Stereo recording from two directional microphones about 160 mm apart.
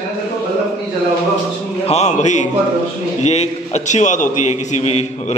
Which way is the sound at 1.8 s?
45° left (ahead or behind).